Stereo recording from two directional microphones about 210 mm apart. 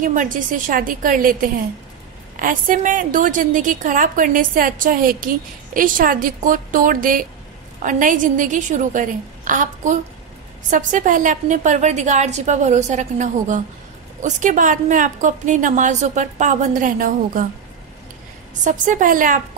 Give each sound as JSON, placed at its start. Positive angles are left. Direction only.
{"t": 0.0, "sound": "a woman's voice", "side_deg": -40}
{"t": 18.6, "sound": "a woman's voice", "side_deg": -40}